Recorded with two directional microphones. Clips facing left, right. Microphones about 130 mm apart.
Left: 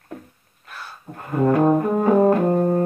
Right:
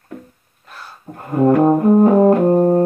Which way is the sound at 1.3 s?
30° right (ahead or behind).